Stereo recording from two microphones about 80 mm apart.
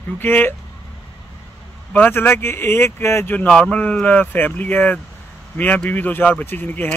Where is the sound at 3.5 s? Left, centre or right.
Centre.